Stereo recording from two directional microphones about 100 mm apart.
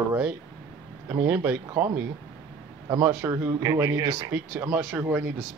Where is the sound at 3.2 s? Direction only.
30° right (ahead or behind).